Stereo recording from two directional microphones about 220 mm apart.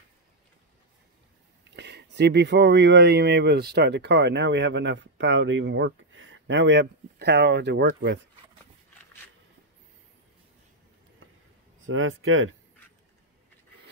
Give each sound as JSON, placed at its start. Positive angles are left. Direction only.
{"t": 1.8, "sound": "speech", "side_deg": -50}
{"t": 11.8, "sound": "speech", "side_deg": -65}